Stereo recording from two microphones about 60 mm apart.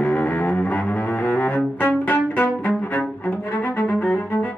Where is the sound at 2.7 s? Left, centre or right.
Left.